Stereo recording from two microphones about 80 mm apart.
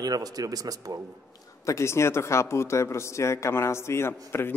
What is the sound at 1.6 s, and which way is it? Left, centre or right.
Speech, left.